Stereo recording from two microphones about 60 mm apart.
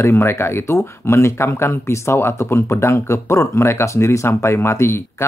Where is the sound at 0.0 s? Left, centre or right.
Left.